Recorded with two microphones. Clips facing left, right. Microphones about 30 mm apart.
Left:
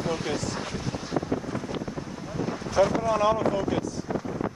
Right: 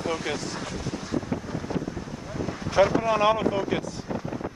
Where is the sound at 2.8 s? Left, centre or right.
Right.